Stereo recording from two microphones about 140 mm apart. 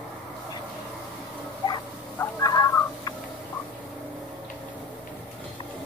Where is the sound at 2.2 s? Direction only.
25° left (ahead or behind).